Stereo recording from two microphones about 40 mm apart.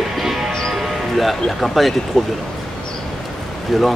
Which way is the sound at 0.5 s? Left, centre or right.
Centre.